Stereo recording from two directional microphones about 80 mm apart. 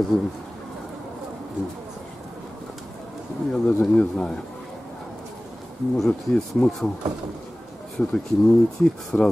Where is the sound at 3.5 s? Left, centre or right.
Centre.